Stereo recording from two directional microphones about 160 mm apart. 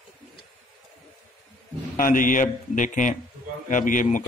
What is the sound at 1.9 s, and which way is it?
A man's voice, 60° left (ahead or behind).